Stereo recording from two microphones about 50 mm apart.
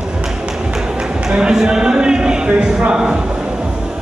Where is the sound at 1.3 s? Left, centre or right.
Centre.